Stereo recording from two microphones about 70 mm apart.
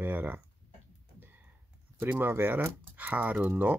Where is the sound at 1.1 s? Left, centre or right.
Right.